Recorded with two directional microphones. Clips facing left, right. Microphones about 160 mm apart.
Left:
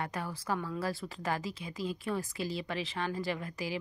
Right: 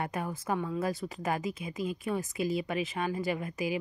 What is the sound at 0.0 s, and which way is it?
A woman's voice, 20° right (ahead or behind).